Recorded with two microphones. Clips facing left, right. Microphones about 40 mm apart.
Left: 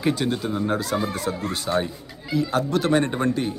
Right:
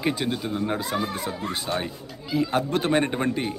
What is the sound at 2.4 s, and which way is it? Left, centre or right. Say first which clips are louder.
A man's voice: left 1 dB; right.